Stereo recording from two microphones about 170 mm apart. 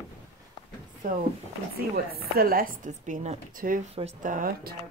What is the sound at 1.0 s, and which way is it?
Speech, 50° right (ahead or behind).